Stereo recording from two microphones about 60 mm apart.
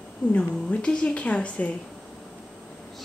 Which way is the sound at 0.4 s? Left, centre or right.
Centre.